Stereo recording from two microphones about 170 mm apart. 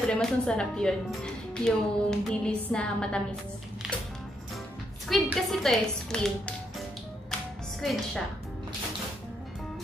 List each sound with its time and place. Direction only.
0.1 s a woman's voice: 5° left (ahead or behind)
5.0 s a woman's voice: centre (ahead or behind)
7.8 s a woman's voice: centre (ahead or behind)